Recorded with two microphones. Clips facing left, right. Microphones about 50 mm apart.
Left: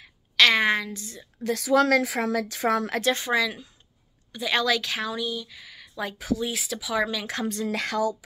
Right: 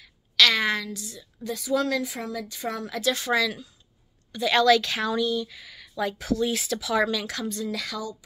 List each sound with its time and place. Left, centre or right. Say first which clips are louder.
0.0 s a sound: left 1 dB; left
1.4 s a woman's voice: left 5 dB; left
3.1 s speech: right 1 dB; left; by 7.2 s centre
7.4 s speech: left 3 dB; left